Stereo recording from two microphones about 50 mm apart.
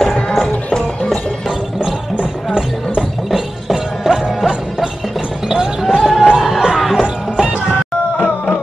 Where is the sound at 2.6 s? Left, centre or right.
Centre.